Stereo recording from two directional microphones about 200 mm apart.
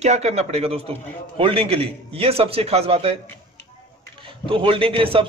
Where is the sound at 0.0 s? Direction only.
35° right (ahead or behind).